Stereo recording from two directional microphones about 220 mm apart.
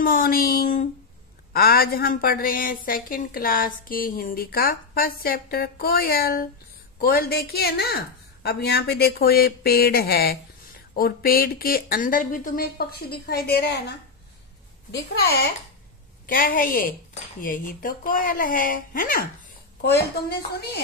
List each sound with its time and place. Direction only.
0.0 s a woman's voice: 40° left (ahead or behind)
16.3 s a woman's voice: 40° left (ahead or behind)